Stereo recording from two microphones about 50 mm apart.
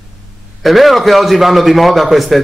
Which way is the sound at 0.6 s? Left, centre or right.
Centre.